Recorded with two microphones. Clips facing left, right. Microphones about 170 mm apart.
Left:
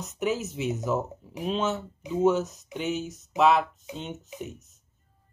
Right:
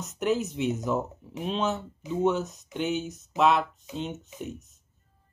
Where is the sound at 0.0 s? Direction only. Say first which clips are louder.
Right 2 dB; centre (ahead or behind).